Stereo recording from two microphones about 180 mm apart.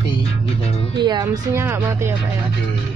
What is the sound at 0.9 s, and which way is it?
Speech, 25° right (ahead or behind).